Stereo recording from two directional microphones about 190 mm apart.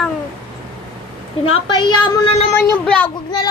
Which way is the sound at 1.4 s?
25° left (ahead or behind).